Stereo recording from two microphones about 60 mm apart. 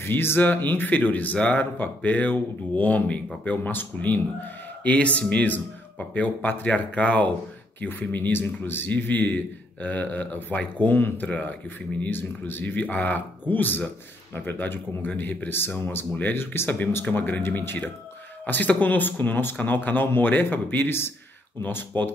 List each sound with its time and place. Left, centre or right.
0.1 s speech: left
12.1 s speech: left
16.1 s speech: left